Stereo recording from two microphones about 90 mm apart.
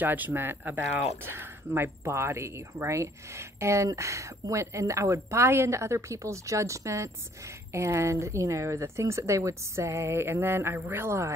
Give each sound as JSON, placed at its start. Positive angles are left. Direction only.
{"t": 0.0, "sound": "speech", "side_deg": -20}